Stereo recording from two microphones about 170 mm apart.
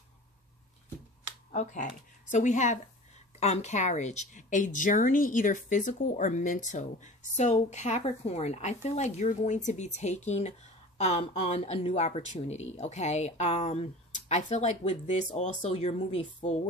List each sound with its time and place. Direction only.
1.5 s a woman's voice: 45° left (ahead or behind)